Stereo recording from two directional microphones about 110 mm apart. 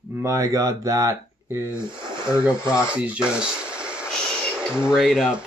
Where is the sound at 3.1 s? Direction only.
10° right (ahead or behind).